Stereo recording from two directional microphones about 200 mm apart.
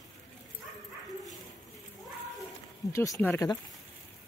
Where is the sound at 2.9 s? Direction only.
15° left (ahead or behind).